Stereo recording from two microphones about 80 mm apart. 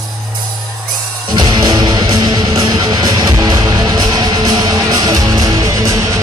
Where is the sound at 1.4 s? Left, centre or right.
Right.